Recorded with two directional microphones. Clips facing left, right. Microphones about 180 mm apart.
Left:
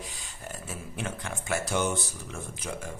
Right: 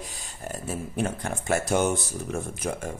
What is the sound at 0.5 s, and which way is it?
Speech, 40° right (ahead or behind).